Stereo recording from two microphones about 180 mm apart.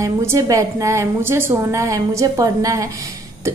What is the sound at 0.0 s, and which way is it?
A woman's voice, 15° right (ahead or behind).